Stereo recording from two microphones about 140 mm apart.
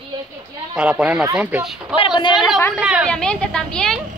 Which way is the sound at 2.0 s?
35° left (ahead or behind).